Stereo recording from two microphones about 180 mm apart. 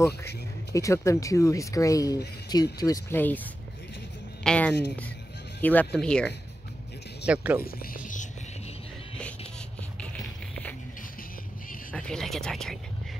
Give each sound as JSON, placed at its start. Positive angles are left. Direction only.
{"t": 0.7, "sound": "speech", "side_deg": 15}
{"t": 4.4, "sound": "speech", "side_deg": 5}
{"t": 7.2, "sound": "speech", "side_deg": -10}
{"t": 7.6, "sound": "music", "side_deg": 55}
{"t": 11.9, "sound": "speech", "side_deg": 5}